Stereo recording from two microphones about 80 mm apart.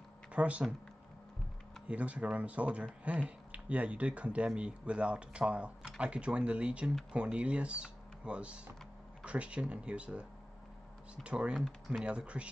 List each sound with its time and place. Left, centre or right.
0.3 s speech: centre
1.9 s speech: centre
11.2 s speech: centre